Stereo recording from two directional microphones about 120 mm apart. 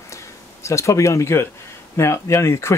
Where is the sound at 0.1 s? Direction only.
25° left (ahead or behind).